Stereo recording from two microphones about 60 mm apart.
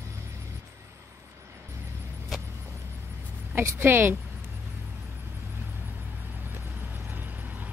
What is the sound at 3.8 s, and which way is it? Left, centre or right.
Speech, right.